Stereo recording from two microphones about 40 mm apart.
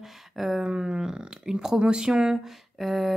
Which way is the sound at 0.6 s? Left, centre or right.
Right.